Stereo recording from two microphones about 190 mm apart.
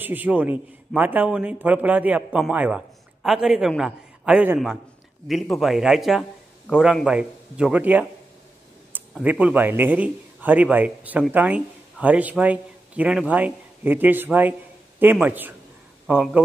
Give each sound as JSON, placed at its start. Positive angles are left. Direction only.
{"t": 0.0, "sound": "a man's voice", "side_deg": -10}